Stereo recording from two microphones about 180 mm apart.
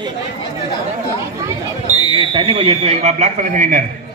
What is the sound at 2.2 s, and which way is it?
Speech, 30° right (ahead or behind).